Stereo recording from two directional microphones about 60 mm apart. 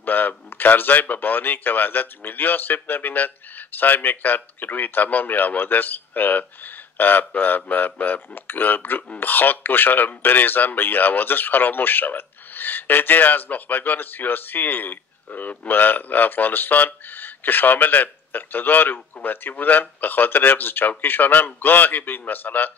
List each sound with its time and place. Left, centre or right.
0.0 s a man's voice: left